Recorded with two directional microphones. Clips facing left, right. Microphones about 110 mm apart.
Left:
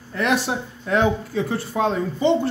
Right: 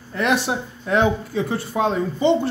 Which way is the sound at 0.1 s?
20° right (ahead or behind).